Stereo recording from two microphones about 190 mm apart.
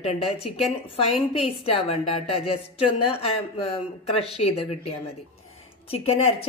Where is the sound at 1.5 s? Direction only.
30° left (ahead or behind).